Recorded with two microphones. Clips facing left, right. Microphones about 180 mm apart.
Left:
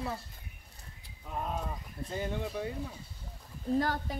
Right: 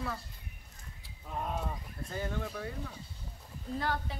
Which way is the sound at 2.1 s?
20° left (ahead or behind).